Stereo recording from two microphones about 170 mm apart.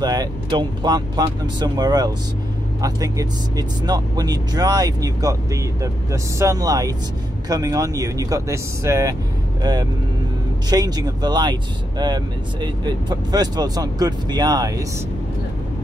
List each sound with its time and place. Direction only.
0.0 s speech: 25° right (ahead or behind)